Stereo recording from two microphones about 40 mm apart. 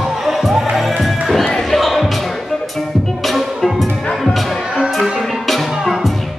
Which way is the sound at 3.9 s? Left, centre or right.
Left.